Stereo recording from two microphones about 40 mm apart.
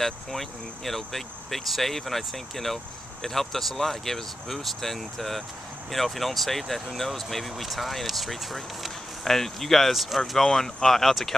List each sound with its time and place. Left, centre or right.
0.0 s speech: centre